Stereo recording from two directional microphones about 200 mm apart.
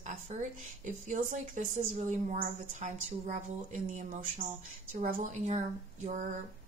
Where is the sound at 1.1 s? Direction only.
40° right (ahead or behind).